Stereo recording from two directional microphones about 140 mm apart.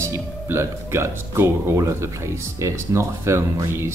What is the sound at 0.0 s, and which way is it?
Speech, 20° right (ahead or behind).